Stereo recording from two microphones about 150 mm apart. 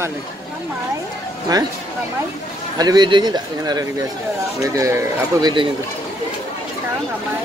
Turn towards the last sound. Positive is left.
turn(degrees=-20)  # may be behind; listen again after turning